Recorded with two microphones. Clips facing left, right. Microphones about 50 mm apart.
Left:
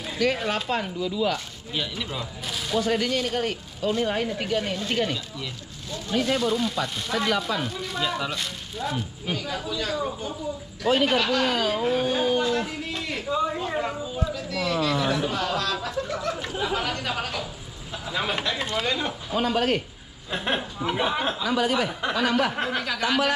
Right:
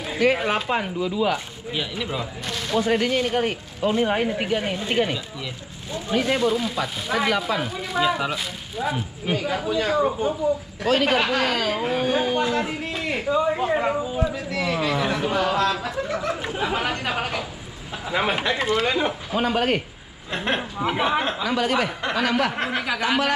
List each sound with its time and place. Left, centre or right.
0.1 s speech: centre
2.4 s speech: centre
2.8 s speech: centre
11.5 s speech: centre
12.4 s a man's voice: right
18.6 s speech: centre
18.9 s speech: centre